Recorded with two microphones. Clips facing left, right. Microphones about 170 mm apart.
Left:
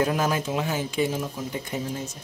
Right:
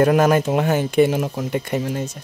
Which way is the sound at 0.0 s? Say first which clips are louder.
Right 9 dB; 65° right (ahead or behind).